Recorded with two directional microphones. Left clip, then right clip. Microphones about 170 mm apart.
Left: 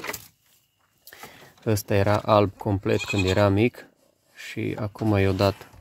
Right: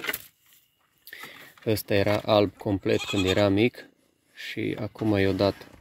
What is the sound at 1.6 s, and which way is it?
Speech, centre (ahead or behind).